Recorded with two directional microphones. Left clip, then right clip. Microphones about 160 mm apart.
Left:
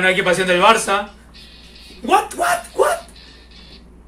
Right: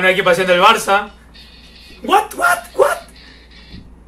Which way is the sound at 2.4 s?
10° left (ahead or behind).